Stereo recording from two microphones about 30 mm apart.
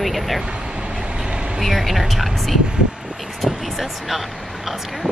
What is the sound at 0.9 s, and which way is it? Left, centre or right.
Vehicle, right.